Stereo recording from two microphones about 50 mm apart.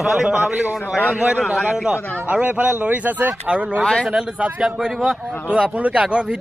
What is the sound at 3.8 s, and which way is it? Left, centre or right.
Speech, centre.